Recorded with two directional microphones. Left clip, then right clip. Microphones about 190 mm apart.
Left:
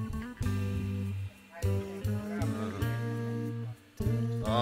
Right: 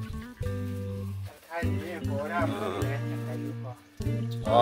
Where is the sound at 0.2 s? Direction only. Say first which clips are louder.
Right 4 dB; centre (ahead or behind).